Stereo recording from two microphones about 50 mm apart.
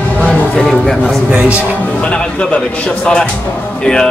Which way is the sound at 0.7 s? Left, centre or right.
Centre.